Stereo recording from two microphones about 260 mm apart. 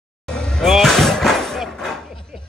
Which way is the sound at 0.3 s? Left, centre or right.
Centre.